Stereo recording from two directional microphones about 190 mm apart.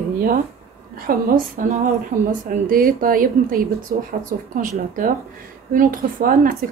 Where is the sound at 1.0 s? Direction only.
50° right (ahead or behind).